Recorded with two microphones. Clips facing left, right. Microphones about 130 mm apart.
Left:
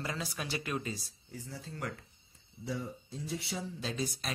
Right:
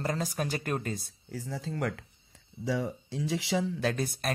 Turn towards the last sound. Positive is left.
turn(degrees=-55)  # may be behind; listen again after turning